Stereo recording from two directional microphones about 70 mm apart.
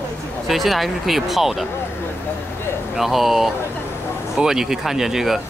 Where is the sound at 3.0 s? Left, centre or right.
Centre.